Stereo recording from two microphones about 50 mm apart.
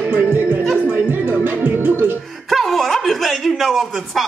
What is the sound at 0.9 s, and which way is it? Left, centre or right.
Music, right.